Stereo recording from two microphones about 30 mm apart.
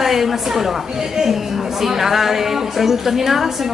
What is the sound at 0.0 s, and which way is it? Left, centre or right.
A woman's voice, centre.